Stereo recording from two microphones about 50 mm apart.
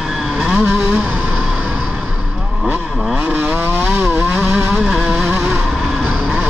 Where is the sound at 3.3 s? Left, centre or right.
Right.